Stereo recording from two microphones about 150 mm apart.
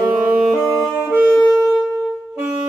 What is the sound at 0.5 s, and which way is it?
Music, 5° right (ahead or behind).